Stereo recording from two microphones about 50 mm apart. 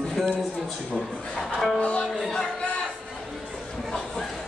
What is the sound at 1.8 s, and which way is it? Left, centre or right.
Speech, left.